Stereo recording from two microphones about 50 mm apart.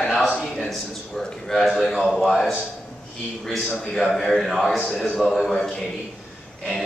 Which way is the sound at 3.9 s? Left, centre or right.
Centre.